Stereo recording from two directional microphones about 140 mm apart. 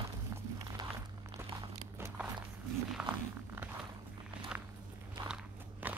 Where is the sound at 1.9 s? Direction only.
15° right (ahead or behind).